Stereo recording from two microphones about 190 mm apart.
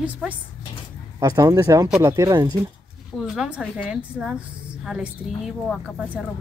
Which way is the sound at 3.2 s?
5° right (ahead or behind).